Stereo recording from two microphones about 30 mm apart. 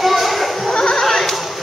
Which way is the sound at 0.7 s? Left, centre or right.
Left.